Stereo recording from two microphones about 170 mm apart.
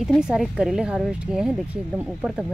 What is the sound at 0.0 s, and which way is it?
Speech, centre (ahead or behind).